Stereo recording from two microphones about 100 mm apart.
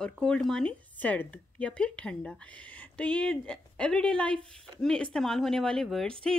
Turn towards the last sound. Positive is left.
turn(degrees=5)  # may be behind; listen again after turning